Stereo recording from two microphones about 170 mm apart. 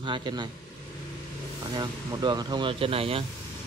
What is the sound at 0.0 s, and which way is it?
Speech, 30° right (ahead or behind).